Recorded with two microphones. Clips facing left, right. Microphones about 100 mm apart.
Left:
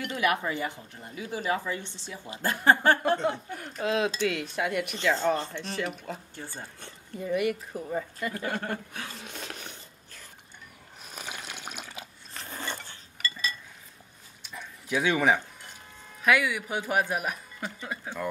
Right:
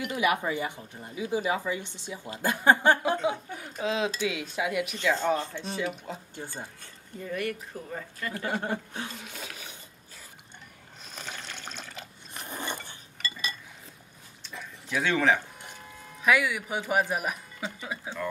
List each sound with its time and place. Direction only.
0.0 s speech: 10° right (ahead or behind)
6.8 s speech: 25° left (ahead or behind)
8.4 s speech: 15° right (ahead or behind)
9.6 s a sound: 10° right (ahead or behind)
11.1 s water: 10° left (ahead or behind)
12.4 s dishes: 15° right (ahead or behind)
14.9 s speech: 10° left (ahead or behind)
16.2 s speech: centre (ahead or behind)